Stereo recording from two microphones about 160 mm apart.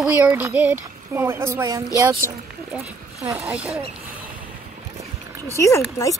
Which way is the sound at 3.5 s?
5° right (ahead or behind).